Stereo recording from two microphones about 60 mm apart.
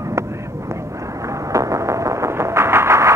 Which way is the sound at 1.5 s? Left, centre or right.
Right.